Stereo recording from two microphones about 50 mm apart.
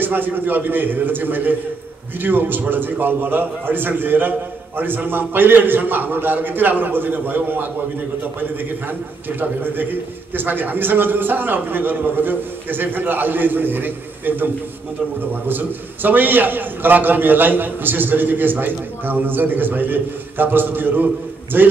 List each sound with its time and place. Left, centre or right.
0.0 s a man's voice: right